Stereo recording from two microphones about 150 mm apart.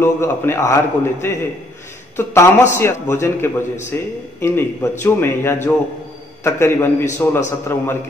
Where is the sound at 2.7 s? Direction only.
15° left (ahead or behind).